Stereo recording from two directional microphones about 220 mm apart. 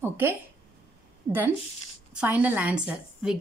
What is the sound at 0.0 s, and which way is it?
Speech, 10° right (ahead or behind).